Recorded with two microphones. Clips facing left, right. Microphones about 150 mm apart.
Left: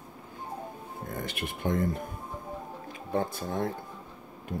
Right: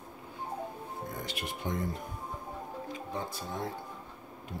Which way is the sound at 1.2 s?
55° left (ahead or behind).